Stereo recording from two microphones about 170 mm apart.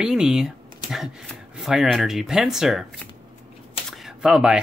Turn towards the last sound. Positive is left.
turn(degrees=-5)  # may be behind; listen again after turning